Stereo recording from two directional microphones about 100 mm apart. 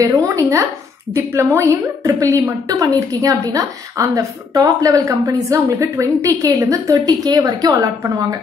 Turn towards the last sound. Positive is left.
turn(degrees=-35)  # may be behind; listen again after turning